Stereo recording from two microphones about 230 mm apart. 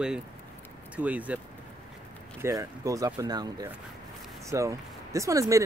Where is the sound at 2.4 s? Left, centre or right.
Centre.